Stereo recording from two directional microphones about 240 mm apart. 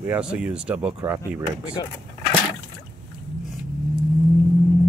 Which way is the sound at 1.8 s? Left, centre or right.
Centre.